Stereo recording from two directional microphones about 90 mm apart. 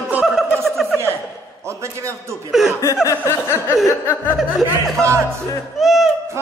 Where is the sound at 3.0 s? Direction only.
35° left (ahead or behind).